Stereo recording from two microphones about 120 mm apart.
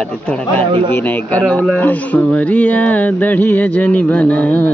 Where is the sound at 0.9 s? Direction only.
15° left (ahead or behind).